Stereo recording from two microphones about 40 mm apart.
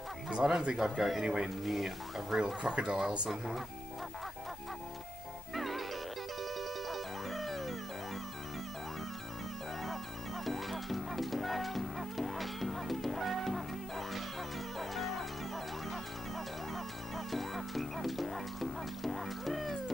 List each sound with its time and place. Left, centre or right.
0.4 s speech: right
0.7 s speech: centre
1.2 s speech: centre
1.6 s speech: centre
2.7 s speech: right
3.3 s speech: centre
5.5 s music: centre
10.4 s music: centre